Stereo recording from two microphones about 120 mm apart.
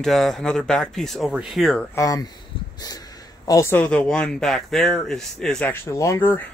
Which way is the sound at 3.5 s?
25° left (ahead or behind).